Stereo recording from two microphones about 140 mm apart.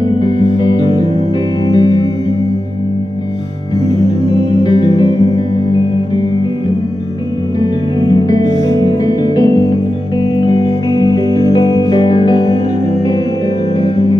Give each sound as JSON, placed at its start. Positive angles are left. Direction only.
{"t": 0.2, "sound": "music", "side_deg": 35}
{"t": 4.6, "sound": "music", "side_deg": 30}
{"t": 8.1, "sound": "music", "side_deg": 25}
{"t": 13.7, "sound": "music", "side_deg": 35}